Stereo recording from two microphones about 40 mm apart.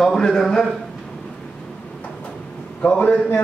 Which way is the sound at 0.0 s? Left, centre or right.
Centre.